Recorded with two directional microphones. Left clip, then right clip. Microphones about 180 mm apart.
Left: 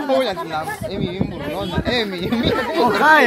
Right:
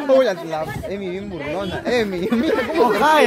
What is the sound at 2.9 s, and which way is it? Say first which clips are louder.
Speech: left 4 dB; 5° left (ahead or behind).